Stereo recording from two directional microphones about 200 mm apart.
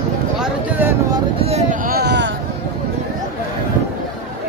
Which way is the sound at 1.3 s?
30° right (ahead or behind).